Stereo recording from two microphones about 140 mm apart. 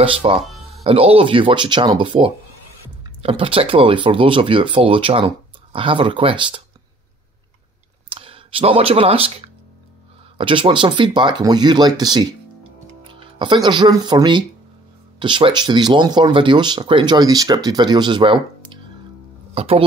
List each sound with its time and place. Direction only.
0.0 s speech: 40° right (ahead or behind)
8.1 s speech: 40° right (ahead or behind)
19.5 s speech: 45° right (ahead or behind)